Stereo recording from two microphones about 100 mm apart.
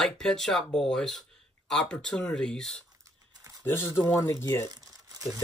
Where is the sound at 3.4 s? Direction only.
35° right (ahead or behind).